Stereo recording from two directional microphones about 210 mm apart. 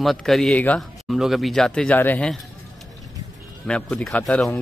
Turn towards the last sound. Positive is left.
turn(degrees=5)  # may be behind; listen again after turning